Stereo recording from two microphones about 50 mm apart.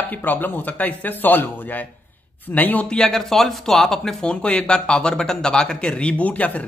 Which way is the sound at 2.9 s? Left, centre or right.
Centre.